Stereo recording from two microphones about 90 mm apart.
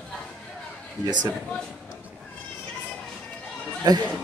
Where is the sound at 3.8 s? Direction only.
50° right (ahead or behind).